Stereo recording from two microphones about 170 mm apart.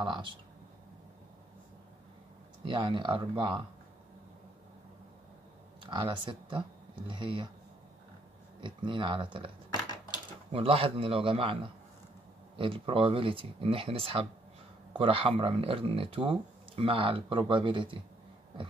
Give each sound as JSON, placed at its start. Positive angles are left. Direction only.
{"t": 0.0, "sound": "speech", "side_deg": -30}
{"t": 2.6, "sound": "speech", "side_deg": -30}
{"t": 5.8, "sound": "speech", "side_deg": -30}
{"t": 8.5, "sound": "speech", "side_deg": -30}
{"t": 10.5, "sound": "speech", "side_deg": -35}